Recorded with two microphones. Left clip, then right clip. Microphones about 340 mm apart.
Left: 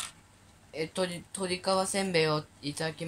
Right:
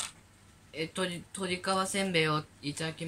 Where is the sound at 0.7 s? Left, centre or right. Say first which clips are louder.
Left 2 dB; centre.